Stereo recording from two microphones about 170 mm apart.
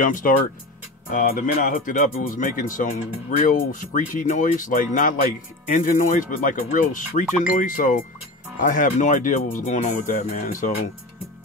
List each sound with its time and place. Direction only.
0.0 s speech: 55° left (ahead or behind)